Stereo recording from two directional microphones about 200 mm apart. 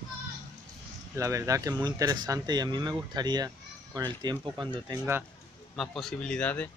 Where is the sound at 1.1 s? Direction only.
15° right (ahead or behind).